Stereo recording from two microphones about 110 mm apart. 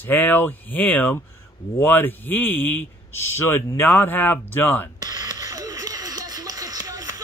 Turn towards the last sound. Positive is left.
turn(degrees=-35)  # may be behind; listen again after turning